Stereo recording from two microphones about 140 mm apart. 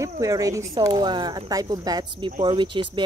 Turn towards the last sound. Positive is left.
turn(degrees=-35)  # may be behind; listen again after turning